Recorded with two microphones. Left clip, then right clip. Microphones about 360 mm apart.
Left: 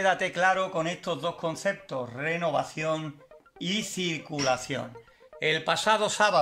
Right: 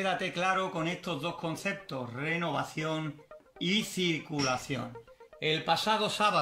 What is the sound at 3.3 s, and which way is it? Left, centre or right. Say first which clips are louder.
Music: right 2 dB; centre.